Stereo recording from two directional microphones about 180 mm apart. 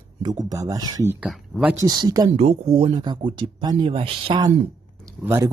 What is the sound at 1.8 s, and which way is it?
Speech, 20° right (ahead or behind).